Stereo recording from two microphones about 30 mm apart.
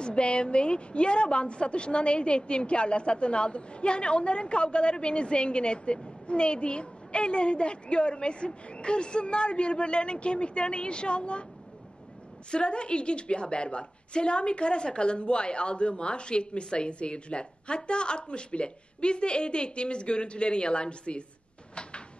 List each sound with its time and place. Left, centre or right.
0.0 s a woman's voice: left
12.4 s a woman's voice: left